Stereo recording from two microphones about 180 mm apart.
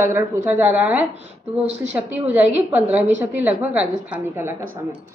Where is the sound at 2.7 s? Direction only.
10° right (ahead or behind).